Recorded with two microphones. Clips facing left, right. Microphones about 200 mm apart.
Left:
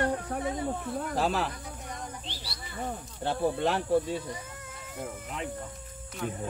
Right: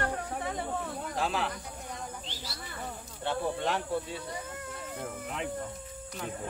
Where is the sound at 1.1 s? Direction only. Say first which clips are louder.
Left 3 dB; 40° left (ahead or behind).